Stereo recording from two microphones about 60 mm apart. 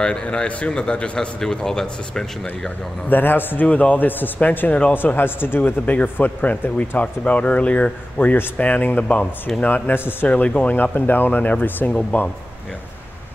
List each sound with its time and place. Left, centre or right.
0.0 s speech: centre
3.1 s speech: left
3.6 s speech: left